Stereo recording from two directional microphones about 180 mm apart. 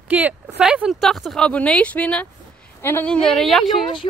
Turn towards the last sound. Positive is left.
turn(degrees=0)  # may be behind; listen again after turning